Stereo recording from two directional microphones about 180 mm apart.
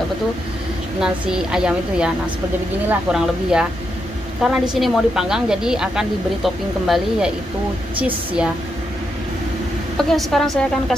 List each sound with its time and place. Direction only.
1.0 s a woman's voice: 5° right (ahead or behind)
9.9 s a woman's voice: centre (ahead or behind)